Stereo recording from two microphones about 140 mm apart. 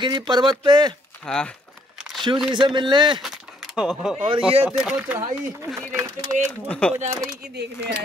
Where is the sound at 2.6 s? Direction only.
35° right (ahead or behind).